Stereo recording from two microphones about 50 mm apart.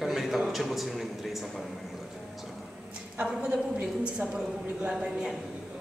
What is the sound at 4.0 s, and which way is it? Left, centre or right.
Speech, right.